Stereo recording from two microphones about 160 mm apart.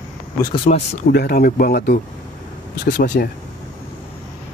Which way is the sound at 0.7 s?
55° left (ahead or behind).